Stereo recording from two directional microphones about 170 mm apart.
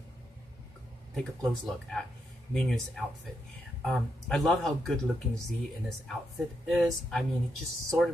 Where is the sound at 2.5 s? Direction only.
Centre (ahead or behind).